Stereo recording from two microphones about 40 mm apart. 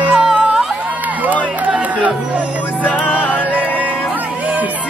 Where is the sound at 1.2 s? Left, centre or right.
Right.